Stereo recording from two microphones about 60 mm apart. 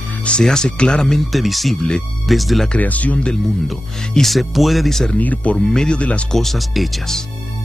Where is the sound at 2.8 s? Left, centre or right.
Left.